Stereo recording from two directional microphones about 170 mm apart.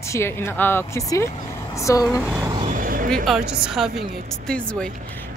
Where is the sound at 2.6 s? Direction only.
50° right (ahead or behind).